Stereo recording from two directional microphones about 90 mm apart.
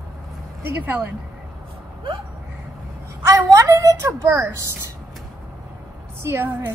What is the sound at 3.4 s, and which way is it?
A woman's voice, 35° right (ahead or behind).